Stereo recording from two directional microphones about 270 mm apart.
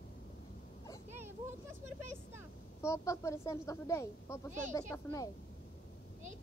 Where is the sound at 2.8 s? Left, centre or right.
Centre.